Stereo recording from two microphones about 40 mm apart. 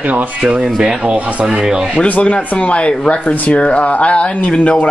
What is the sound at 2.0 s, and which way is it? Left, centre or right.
Speech, left.